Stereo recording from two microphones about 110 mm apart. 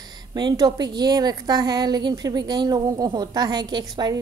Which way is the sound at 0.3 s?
40° right (ahead or behind).